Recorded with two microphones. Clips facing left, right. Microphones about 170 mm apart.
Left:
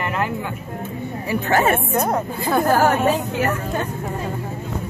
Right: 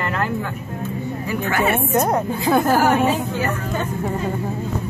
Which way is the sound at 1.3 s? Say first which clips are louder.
Left 3 dB; 35° left (ahead or behind).